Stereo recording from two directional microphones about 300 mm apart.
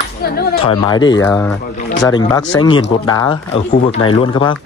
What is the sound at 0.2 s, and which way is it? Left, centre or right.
Speech, left.